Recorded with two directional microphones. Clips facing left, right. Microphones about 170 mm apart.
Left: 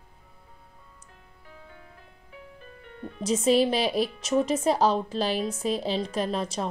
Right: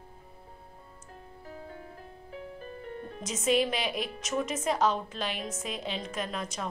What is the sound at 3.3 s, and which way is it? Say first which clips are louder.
A woman's voice: left 6 dB; 35° left (ahead or behind).